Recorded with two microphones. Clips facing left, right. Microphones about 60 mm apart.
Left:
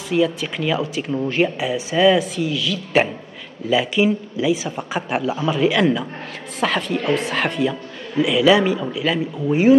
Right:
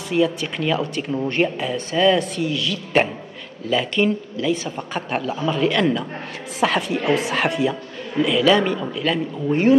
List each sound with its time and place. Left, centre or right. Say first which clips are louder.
0.1 s speech: left 1 dB; centre